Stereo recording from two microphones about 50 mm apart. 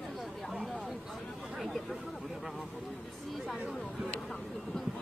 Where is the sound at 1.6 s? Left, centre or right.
Centre.